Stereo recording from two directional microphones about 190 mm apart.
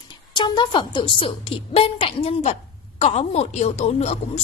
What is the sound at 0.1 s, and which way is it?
A woman's voice, 25° left (ahead or behind).